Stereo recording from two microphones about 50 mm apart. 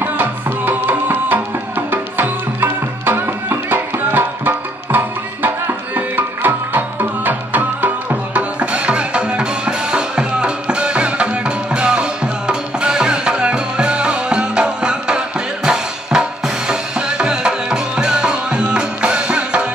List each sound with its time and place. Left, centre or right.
0.0 s music: right; by 19.7 s centre